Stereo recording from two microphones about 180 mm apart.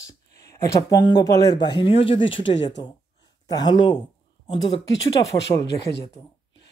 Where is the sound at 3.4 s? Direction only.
25° left (ahead or behind).